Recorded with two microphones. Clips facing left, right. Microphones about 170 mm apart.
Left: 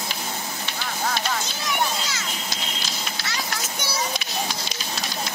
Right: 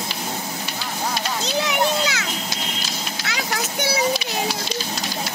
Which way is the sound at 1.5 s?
70° right (ahead or behind).